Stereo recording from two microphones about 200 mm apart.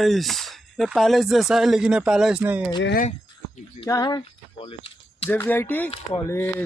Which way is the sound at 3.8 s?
20° left (ahead or behind).